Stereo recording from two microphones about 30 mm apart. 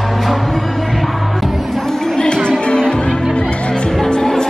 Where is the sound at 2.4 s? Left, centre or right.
Left.